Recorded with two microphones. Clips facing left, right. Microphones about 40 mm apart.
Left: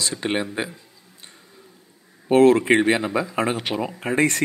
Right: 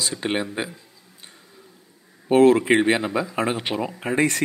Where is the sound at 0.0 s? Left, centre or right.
Centre.